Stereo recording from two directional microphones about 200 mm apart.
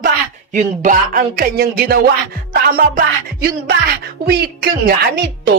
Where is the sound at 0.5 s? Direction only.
40° right (ahead or behind).